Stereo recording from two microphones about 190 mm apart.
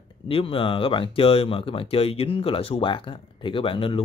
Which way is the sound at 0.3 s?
30° left (ahead or behind).